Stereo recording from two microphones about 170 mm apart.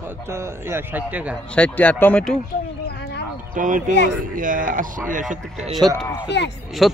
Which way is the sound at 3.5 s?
50° right (ahead or behind).